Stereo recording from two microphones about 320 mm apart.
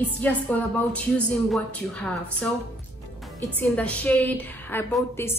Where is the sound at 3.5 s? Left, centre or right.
Centre.